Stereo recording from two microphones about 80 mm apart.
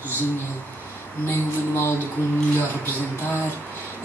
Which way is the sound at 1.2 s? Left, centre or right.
Left.